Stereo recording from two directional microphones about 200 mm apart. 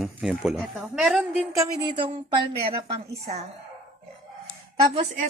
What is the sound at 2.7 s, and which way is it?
Speech, 30° right (ahead or behind).